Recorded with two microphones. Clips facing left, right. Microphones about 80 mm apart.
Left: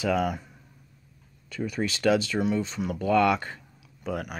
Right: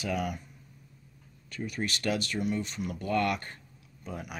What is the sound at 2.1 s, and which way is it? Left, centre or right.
Speech, left.